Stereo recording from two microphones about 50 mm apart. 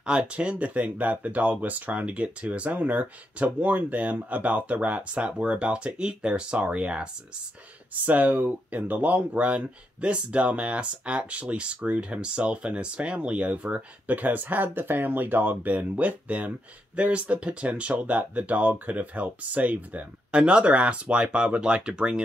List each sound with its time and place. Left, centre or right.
0.0 s speech: centre
7.9 s speech: right